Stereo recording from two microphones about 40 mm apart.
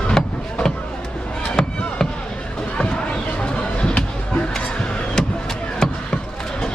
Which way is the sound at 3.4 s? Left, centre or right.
Left.